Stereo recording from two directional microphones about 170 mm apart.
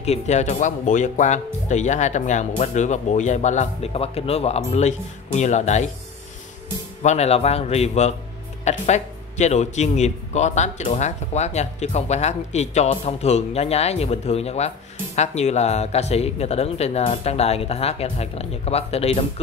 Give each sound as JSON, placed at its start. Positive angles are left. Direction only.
{"t": 0.0, "sound": "speech", "side_deg": 40}
{"t": 7.0, "sound": "speech", "side_deg": 40}